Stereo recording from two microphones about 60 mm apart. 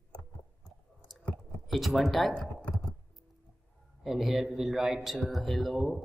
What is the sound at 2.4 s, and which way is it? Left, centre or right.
Computer keyboard, centre.